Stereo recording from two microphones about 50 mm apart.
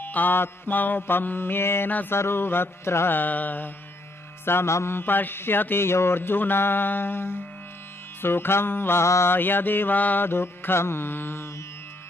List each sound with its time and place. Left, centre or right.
0.0 s mantra: left
3.1 s mantra: left
4.5 s mantra: left
4.9 s mantra: left
9.0 s mantra: left
9.3 s mantra: left
10.2 s mantra: left